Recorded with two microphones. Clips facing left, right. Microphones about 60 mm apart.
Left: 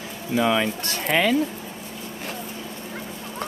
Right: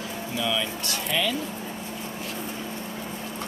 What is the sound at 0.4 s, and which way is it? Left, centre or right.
Speech, left.